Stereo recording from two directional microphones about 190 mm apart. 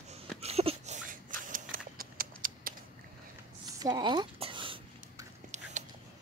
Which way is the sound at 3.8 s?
25° right (ahead or behind).